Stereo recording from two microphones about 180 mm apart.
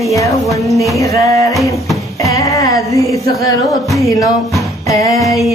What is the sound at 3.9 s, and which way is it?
Music, 20° left (ahead or behind).